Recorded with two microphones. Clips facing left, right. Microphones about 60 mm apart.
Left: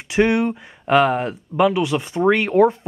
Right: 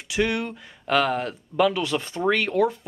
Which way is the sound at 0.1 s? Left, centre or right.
Left.